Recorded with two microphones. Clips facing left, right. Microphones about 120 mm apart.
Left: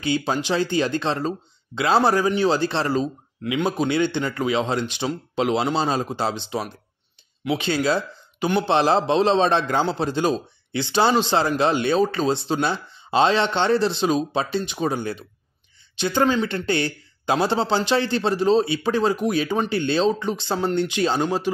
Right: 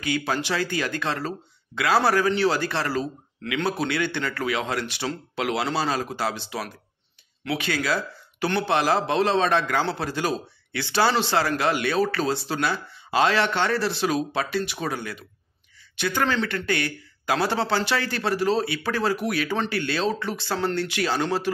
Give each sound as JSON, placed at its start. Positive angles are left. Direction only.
{"t": 0.0, "sound": "a man's voice", "side_deg": 25}